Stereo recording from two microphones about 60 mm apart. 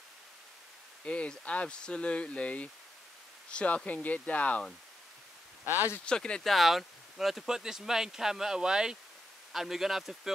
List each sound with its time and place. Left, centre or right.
1.0 s speech: centre
6.0 s speech: centre
6.5 s speech: centre